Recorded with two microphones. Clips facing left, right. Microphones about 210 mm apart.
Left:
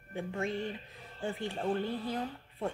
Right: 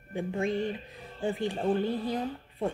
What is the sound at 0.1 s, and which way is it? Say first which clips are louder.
Speech: right 5 dB; 15° right (ahead or behind).